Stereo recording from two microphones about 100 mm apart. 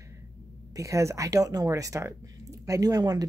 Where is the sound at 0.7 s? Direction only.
30° right (ahead or behind).